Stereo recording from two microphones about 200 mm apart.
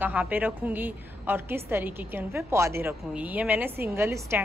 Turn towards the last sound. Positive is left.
turn(degrees=-15)  # may be behind; listen again after turning